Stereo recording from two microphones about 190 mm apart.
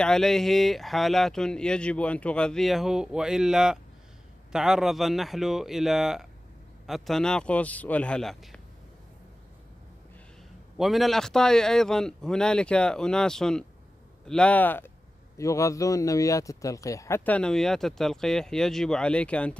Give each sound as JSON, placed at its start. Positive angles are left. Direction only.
{"t": 0.0, "sound": "speech", "side_deg": 5}
{"t": 10.8, "sound": "speech", "side_deg": 0}